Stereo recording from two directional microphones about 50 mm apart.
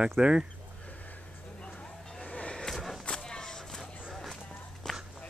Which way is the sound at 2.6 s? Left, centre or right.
Centre.